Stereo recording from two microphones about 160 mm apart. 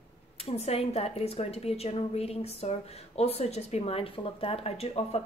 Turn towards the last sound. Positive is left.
turn(degrees=40)  # may be behind; listen again after turning